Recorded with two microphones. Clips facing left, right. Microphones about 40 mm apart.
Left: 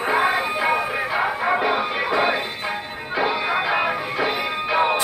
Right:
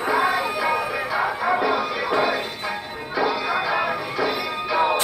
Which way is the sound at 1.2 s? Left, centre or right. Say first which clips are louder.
Even; left.